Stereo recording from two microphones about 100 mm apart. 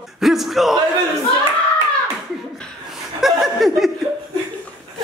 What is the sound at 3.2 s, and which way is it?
Speech, centre (ahead or behind).